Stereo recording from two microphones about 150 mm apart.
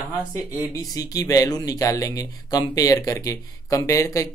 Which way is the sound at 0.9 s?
25° left (ahead or behind).